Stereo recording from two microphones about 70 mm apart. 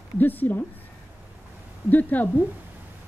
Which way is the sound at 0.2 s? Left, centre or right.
Left.